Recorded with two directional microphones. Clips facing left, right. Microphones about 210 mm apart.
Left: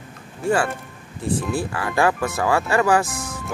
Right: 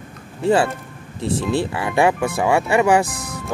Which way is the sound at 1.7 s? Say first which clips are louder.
Right 1 dB; 20° right (ahead or behind).